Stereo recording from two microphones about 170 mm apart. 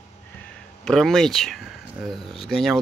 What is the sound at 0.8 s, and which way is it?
Speech, centre (ahead or behind).